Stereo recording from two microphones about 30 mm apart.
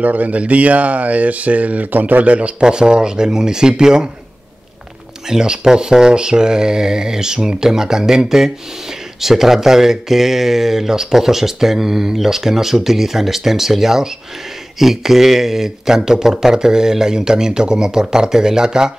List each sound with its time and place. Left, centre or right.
0.0 s speech: right
0.4 s speech: right
2.6 s speech: right
5.2 s speech: right